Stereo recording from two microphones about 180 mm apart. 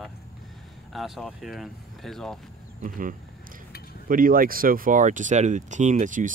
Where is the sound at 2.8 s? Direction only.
50° right (ahead or behind).